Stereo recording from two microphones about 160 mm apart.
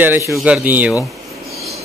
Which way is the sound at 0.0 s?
15° right (ahead or behind).